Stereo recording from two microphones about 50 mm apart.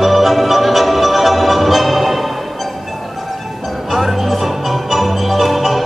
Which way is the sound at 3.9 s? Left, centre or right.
Centre.